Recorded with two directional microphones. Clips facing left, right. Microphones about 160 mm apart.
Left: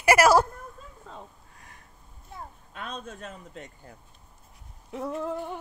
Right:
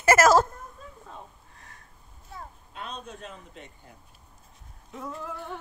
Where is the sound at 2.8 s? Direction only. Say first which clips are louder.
Left 1 dB; 50° left (ahead or behind).